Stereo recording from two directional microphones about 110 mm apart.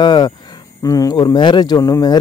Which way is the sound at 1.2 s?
45° left (ahead or behind).